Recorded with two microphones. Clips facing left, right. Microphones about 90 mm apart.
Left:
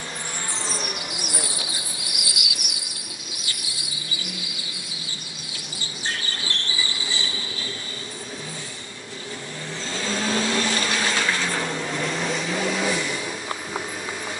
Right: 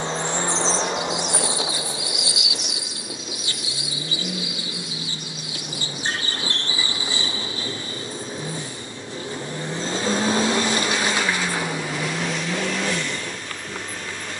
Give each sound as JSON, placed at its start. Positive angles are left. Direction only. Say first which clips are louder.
{"t": 0.3, "sound": "music", "louder": "right 8 dB", "side_deg": -25}
{"t": 0.7, "sound": "insect", "louder": "right 8 dB", "side_deg": -25}
{"t": 3.5, "sound": "vehicle", "louder": "right 4 dB", "side_deg": -25}
{"t": 6.0, "sound": "train", "louder": "right 2 dB", "side_deg": -25}
{"t": 9.8, "sound": "vehicle", "louder": "right 4 dB", "side_deg": -25}